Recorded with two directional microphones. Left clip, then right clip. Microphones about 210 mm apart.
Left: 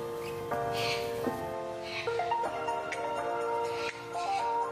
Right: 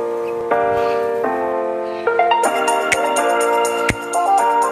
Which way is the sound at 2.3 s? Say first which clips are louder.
Right 16 dB; 50° right (ahead or behind).